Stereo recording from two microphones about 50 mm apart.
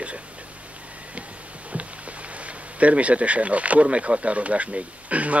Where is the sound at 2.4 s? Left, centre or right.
Right.